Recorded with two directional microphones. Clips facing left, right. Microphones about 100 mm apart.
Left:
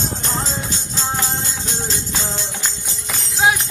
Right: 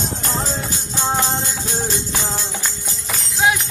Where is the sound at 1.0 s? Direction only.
20° right (ahead or behind).